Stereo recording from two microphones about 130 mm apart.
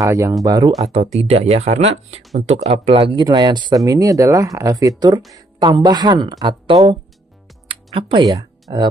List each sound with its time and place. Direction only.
0.0 s speech: 25° right (ahead or behind)
0.8 s speech: 55° right (ahead or behind)
3.3 s a woman's voice: 35° right (ahead or behind)
7.6 s music: 45° right (ahead or behind)
8.2 s speech: 30° right (ahead or behind)